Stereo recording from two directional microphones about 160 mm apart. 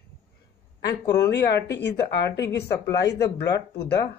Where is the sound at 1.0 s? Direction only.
20° left (ahead or behind).